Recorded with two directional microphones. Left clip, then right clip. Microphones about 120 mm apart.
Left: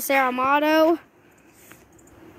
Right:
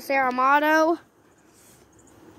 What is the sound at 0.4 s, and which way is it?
Speech, 5° left (ahead or behind).